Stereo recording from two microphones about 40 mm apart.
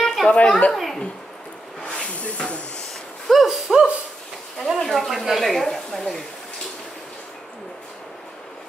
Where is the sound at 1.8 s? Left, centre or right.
Left.